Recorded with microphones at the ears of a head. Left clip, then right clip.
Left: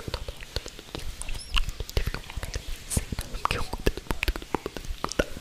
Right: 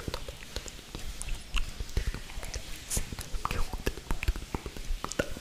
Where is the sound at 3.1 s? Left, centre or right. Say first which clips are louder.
Left 10 dB; left.